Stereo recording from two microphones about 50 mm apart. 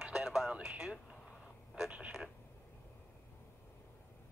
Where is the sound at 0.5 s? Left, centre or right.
Centre.